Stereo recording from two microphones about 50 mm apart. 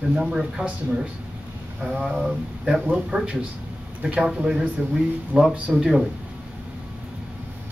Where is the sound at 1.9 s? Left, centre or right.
Centre.